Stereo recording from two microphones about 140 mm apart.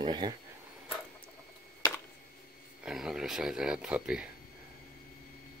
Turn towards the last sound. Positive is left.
turn(degrees=-5)  # may be behind; listen again after turning